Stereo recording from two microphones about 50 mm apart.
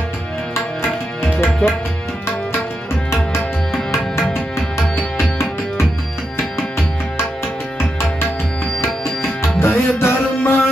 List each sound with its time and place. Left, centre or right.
1.4 s tabla: left
3.7 s tabla: centre
9.4 s music: left